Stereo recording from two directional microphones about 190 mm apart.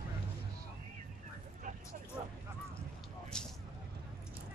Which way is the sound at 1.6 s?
40° right (ahead or behind).